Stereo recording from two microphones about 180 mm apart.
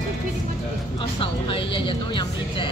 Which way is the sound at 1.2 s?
30° left (ahead or behind).